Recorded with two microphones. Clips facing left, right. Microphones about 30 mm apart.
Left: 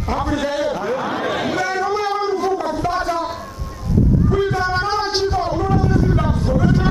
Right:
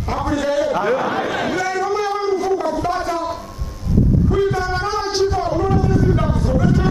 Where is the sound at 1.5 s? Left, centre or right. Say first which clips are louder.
Even; centre.